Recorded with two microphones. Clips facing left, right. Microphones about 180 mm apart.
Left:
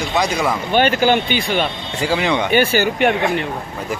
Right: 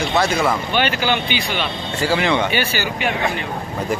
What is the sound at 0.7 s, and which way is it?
Speech, 45° left (ahead or behind).